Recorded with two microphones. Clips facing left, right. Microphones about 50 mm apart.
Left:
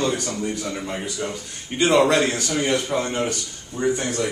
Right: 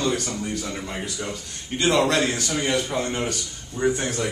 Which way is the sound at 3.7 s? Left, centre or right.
Centre.